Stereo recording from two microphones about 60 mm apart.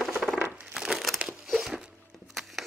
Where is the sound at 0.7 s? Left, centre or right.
Centre.